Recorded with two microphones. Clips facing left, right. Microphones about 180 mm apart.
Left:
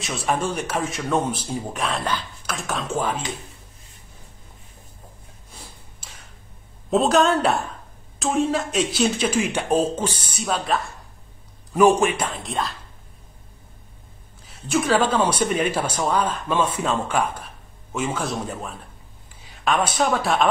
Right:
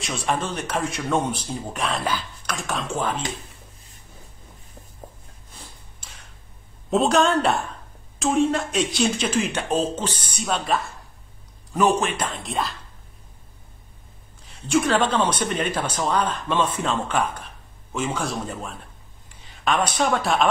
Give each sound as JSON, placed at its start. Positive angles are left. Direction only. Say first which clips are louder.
{"t": 0.0, "sound": "speech", "louder": "left 2 dB", "side_deg": 0}
{"t": 6.9, "sound": "speech", "louder": "left 1 dB", "side_deg": 0}
{"t": 11.7, "sound": "speech", "louder": "left 4 dB", "side_deg": 10}
{"t": 14.4, "sound": "speech", "louder": "right 2 dB", "side_deg": 5}
{"t": 19.4, "sound": "a sound", "louder": "left 1 dB", "side_deg": 0}
{"t": 19.9, "sound": "speech", "louder": "left 1 dB", "side_deg": 0}